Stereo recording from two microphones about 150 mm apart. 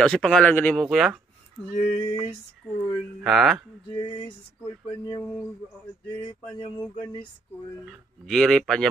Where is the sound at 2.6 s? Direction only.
10° left (ahead or behind).